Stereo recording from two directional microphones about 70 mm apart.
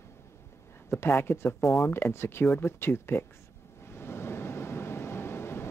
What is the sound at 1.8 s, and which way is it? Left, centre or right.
Speech, left.